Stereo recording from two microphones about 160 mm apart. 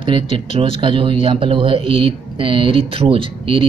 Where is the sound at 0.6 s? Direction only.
35° right (ahead or behind).